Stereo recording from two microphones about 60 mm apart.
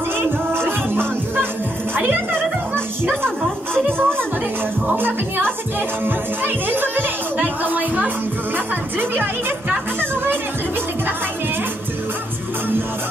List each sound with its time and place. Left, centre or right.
0.2 s music: right
3.7 s music: right
4.8 s speech: right
6.0 s music: right
9.1 s speech: right